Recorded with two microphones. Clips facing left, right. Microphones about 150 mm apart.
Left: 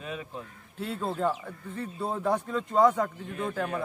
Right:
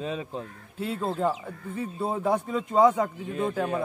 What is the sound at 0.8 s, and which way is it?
A man's voice, 5° right (ahead or behind).